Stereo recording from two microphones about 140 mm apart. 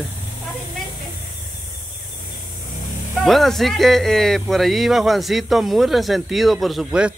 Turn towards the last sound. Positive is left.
turn(degrees=-5)  # may be behind; listen again after turning